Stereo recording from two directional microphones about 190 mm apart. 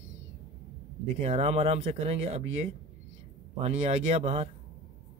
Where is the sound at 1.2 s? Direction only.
35° right (ahead or behind).